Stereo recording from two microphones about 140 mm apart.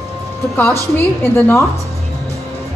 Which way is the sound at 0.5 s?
15° left (ahead or behind).